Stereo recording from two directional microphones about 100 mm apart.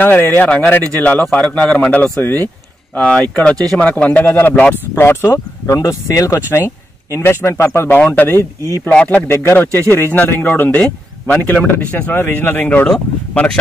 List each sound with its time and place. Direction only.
0.0 s speech: 20° left (ahead or behind)